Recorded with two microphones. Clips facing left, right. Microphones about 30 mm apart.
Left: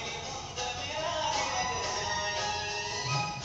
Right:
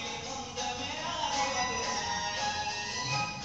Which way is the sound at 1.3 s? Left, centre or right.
Left.